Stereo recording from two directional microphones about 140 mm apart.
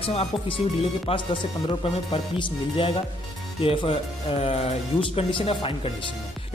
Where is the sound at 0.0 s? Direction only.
45° left (ahead or behind).